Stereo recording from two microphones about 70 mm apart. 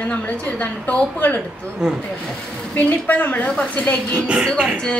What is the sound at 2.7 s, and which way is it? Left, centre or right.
A woman's voice, left.